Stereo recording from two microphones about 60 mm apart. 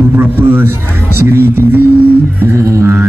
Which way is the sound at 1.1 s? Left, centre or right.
Right.